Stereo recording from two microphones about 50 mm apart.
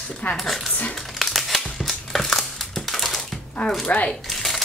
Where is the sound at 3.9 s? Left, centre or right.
Left.